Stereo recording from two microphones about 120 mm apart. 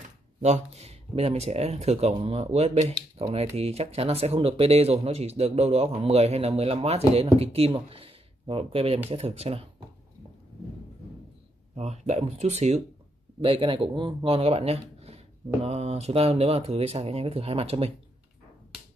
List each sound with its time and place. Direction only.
0.4 s speech: 65° right (ahead or behind)
11.7 s speech: 65° right (ahead or behind)
13.4 s speech: 45° right (ahead or behind)